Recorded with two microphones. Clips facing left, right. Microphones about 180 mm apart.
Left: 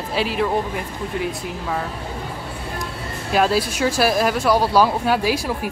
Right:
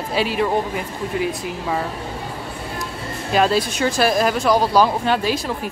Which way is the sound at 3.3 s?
5° left (ahead or behind).